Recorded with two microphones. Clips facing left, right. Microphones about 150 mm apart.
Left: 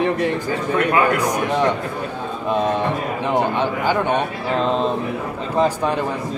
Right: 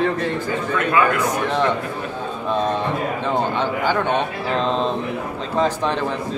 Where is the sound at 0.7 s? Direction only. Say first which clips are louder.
Left 1 dB; 40° left (ahead or behind).